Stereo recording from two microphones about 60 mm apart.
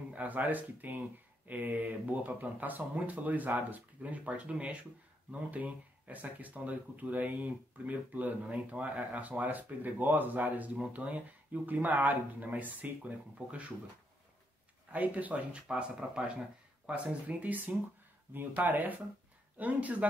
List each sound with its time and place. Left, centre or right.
0.1 s speech: right
14.9 s speech: right